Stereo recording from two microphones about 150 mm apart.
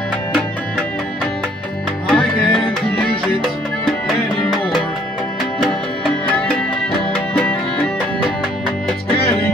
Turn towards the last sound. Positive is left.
turn(degrees=10)  # may be behind; listen again after turning